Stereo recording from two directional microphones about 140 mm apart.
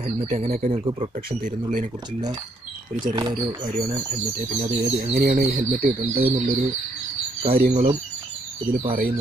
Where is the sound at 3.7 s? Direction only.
50° right (ahead or behind).